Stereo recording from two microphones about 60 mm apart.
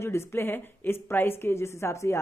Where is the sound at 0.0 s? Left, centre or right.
Left.